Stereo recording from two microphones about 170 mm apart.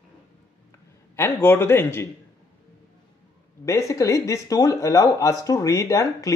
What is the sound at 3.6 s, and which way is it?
Speech, 15° left (ahead or behind).